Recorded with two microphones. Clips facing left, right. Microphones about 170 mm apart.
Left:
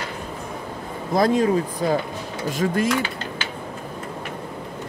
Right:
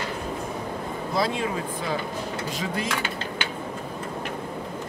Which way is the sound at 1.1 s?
45° left (ahead or behind).